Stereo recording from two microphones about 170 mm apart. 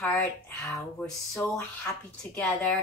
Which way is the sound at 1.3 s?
Centre (ahead or behind).